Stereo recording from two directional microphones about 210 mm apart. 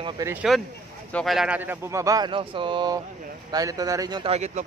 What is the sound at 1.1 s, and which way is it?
Speech, centre (ahead or behind).